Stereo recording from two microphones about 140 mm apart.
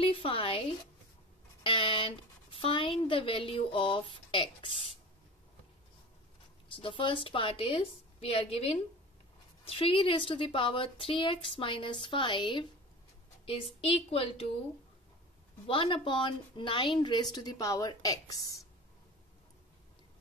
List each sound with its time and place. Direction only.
0.0 s speech: 40° left (ahead or behind)
6.7 s speech: 35° left (ahead or behind)
15.6 s speech: 40° left (ahead or behind)